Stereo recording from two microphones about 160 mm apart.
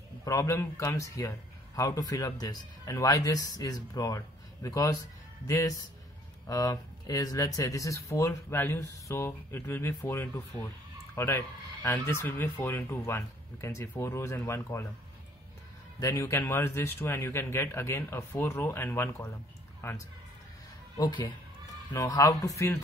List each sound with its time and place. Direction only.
0.2 s speech: 20° left (ahead or behind)
16.0 s speech: 20° left (ahead or behind)
21.0 s speech: 25° left (ahead or behind)